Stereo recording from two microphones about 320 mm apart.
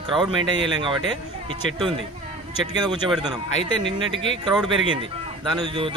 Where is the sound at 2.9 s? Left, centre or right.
Centre.